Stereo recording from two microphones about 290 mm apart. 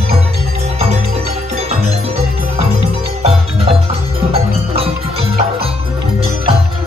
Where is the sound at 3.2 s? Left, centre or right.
Right.